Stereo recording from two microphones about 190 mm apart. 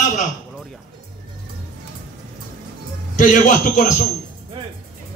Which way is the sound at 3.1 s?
40° left (ahead or behind).